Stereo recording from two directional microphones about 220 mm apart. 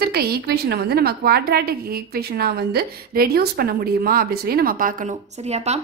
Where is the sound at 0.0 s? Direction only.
45° right (ahead or behind).